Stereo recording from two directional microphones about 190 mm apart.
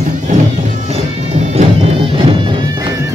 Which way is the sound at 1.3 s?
35° right (ahead or behind).